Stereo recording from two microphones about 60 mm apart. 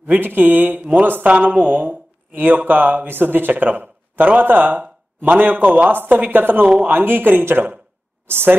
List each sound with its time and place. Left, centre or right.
0.0 s speech: right